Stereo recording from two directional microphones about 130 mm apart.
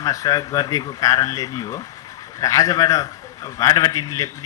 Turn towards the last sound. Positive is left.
turn(degrees=25)  # may be behind; listen again after turning